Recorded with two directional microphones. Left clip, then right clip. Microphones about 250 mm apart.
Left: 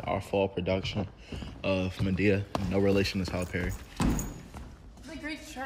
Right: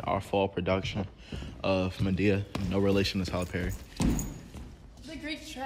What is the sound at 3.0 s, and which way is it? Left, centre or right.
Speech, centre.